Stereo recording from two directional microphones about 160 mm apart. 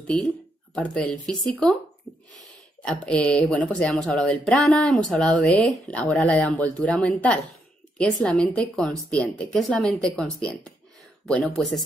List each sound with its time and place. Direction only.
0.0 s speech: 5° left (ahead or behind)
3.1 s speech: 5° left (ahead or behind)